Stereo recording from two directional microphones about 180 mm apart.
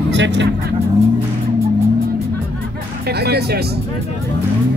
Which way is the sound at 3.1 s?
65° right (ahead or behind).